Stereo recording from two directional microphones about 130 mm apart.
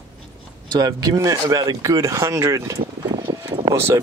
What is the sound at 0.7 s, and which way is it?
Speech, 35° right (ahead or behind).